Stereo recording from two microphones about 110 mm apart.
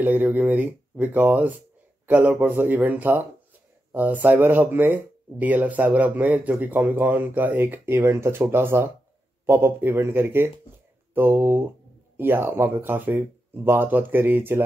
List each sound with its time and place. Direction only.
0.0 s speech: 15° right (ahead or behind)